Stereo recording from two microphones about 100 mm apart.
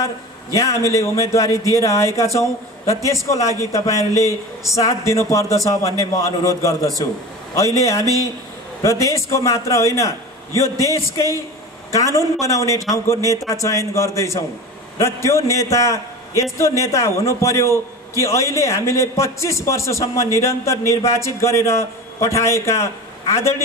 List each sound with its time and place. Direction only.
0.6 s a man's voice: 30° left (ahead or behind)
4.1 s speech: 35° right (ahead or behind)
4.7 s a man's voice: 30° left (ahead or behind)
11.9 s a man's voice: 35° left (ahead or behind)